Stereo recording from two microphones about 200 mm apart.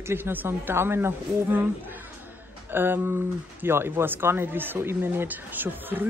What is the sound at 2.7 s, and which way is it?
Speech, 10° right (ahead or behind).